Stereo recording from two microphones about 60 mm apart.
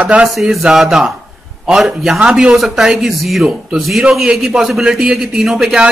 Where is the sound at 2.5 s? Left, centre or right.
Centre.